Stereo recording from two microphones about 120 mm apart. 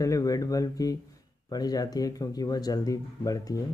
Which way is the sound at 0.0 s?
30° left (ahead or behind).